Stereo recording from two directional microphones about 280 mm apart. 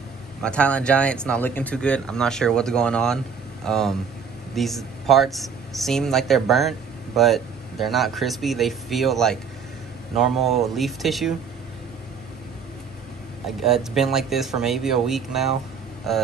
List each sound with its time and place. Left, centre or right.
0.4 s speech: centre
13.6 s speech: centre